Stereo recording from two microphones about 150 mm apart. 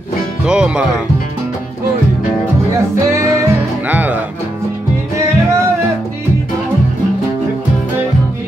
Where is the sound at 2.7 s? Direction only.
20° right (ahead or behind).